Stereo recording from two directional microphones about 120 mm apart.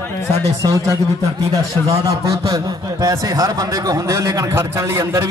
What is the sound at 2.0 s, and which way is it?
A man's voice, 30° right (ahead or behind).